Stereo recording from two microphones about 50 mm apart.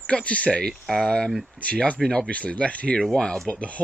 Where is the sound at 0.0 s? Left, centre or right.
Left.